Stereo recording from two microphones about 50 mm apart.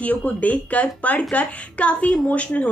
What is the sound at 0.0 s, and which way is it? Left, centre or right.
A woman's voice, left.